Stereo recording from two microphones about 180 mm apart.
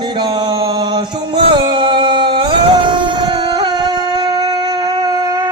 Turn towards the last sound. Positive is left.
turn(degrees=-20)  # may be behind; listen again after turning